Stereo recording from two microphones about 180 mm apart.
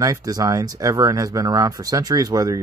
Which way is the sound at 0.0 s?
20° right (ahead or behind).